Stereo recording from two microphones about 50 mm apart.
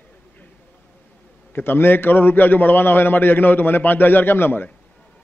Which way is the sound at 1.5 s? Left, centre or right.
Left.